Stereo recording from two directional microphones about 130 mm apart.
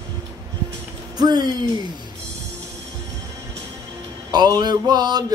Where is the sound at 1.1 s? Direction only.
30° right (ahead or behind).